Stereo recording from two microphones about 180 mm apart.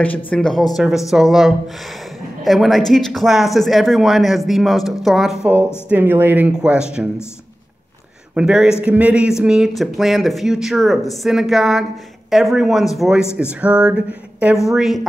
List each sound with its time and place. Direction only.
0.3 s speech: 5° left (ahead or behind)
8.4 s speech: 5° right (ahead or behind)